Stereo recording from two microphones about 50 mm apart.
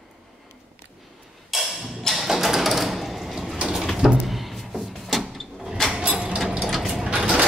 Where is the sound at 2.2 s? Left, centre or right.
Centre.